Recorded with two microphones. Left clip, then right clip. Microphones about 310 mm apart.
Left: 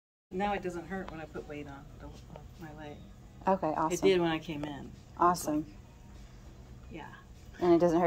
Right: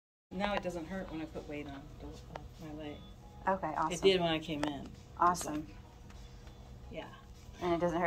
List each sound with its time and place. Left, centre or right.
0.4 s speech: centre
3.4 s a woman's voice: left
4.0 s speech: centre
5.1 s a woman's voice: left
6.9 s speech: centre
7.6 s a woman's voice: left